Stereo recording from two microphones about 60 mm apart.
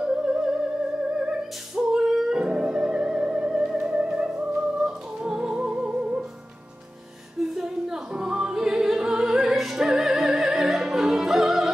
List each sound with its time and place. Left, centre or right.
0.0 s music: centre
1.8 s music: centre
7.5 s music: centre